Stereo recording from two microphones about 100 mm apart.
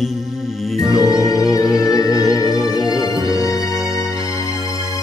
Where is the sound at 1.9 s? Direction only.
35° left (ahead or behind).